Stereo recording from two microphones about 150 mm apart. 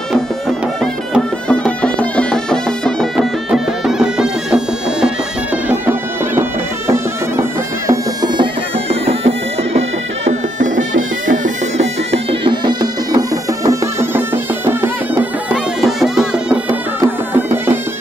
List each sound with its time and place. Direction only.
1.5 s music: 5° left (ahead or behind)
5.7 s bagpipes: 15° right (ahead or behind)
7.9 s music: 25° right (ahead or behind)
8.8 s bagpipes: 40° right (ahead or behind)
11.4 s music: 45° right (ahead or behind); by 13.2 s 30° right (ahead or behind)
13.7 s music: 15° right (ahead or behind)
15.5 s music: centre (ahead or behind)
17.0 s music: 15° right (ahead or behind)